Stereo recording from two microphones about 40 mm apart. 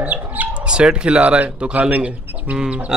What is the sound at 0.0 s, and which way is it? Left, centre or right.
Chicken, right.